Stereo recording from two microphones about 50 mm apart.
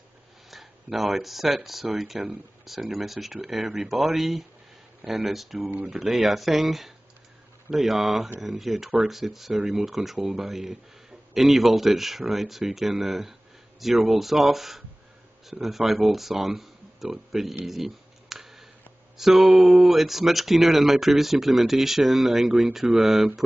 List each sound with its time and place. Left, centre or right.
0.5 s speech: centre
5.7 s speech: right
5.9 s speech: centre
17.6 s a sound: centre
19.1 s mantra: centre
19.6 s speech: centre